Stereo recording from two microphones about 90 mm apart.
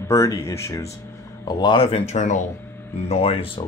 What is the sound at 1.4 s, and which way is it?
Speech, 55° left (ahead or behind).